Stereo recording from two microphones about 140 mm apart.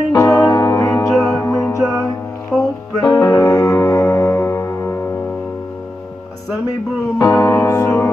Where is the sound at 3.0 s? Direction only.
30° left (ahead or behind).